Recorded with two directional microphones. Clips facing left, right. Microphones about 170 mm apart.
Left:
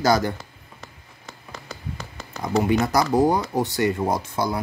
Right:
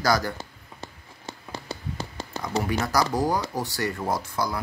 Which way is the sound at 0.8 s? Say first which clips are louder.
Right 5 dB; 25° right (ahead or behind).